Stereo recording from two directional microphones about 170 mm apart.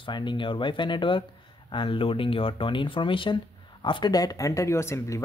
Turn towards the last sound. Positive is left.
turn(degrees=15)  # may be behind; listen again after turning